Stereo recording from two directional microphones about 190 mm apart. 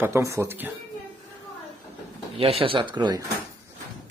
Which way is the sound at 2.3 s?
30° right (ahead or behind).